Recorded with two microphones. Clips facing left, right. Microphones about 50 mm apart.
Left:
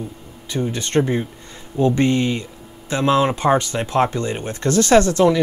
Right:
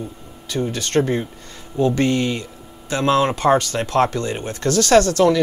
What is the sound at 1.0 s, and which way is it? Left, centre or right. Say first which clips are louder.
Speech: even; centre.